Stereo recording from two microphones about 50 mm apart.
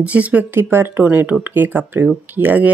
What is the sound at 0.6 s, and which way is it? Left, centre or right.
Speech, right.